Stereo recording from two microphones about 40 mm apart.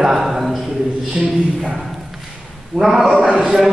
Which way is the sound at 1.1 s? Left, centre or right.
Centre.